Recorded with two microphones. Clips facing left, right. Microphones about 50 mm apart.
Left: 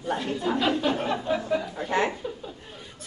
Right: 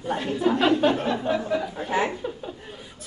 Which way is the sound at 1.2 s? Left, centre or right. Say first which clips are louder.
Right 2 dB; right.